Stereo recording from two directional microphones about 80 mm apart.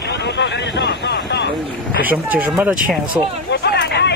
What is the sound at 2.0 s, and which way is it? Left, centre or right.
Speech, right.